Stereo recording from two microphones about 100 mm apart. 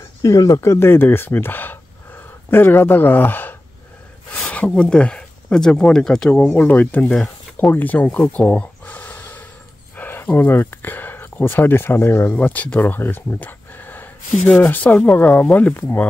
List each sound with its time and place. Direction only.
0.2 s speech: 35° left (ahead or behind); by 3.5 s 20° left (ahead or behind)
4.6 s speech: 10° left (ahead or behind)
6.5 s speech: 20° left (ahead or behind)
8.3 s a sound: 15° left (ahead or behind)
9.9 s speech: 20° left (ahead or behind)